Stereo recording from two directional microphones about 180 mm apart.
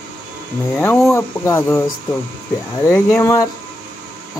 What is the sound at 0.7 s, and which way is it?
Speech, 10° left (ahead or behind).